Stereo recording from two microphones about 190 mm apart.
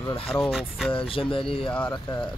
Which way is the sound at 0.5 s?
5° right (ahead or behind).